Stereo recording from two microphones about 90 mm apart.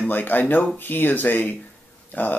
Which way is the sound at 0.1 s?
20° left (ahead or behind).